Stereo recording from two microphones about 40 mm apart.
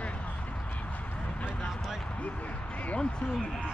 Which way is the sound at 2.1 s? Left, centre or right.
Left.